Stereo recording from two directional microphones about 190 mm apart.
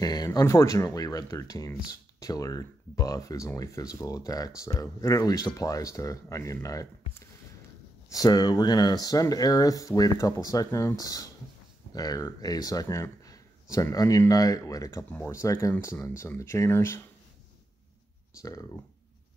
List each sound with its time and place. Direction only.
0.0 s speech: 20° left (ahead or behind)
8.1 s speech: 20° left (ahead or behind)
18.4 s speech: 15° left (ahead or behind)